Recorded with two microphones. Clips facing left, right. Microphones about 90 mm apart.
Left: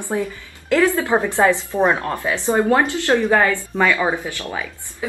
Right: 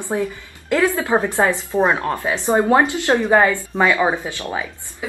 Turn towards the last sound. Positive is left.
turn(degrees=-20)  # may be behind; listen again after turning